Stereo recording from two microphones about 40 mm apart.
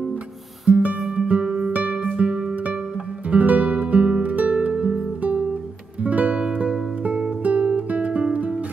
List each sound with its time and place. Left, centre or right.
0.7 s music: right
6.0 s music: right
7.4 s guitar: right